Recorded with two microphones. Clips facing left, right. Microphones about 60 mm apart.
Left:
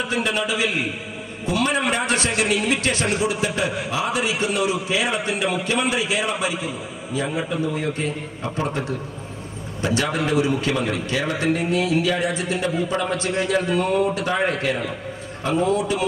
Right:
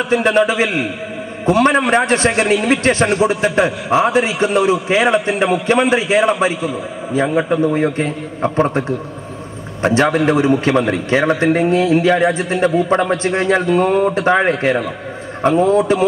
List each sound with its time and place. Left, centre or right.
0.1 s a man's voice: right